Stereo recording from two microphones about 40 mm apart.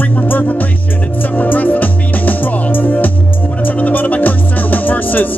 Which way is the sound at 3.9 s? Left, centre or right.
Left.